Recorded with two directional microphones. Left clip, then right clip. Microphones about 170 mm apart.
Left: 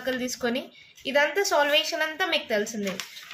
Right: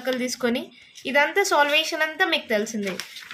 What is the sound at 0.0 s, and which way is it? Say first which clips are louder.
A woman's voice: right 3 dB; 35° right (ahead or behind).